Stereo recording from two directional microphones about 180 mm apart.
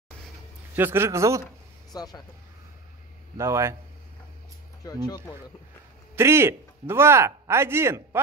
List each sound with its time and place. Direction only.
0.7 s speech: 15° right (ahead or behind)
1.9 s speech: 20° left (ahead or behind)
3.3 s speech: 15° right (ahead or behind)
4.8 s speech: 20° left (ahead or behind)
6.1 s speech: 15° right (ahead or behind)